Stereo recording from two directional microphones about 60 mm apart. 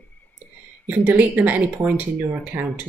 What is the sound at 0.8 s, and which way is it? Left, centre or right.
Speech, right.